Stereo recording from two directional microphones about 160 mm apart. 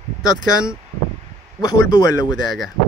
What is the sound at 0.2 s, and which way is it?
Speech, 20° left (ahead or behind).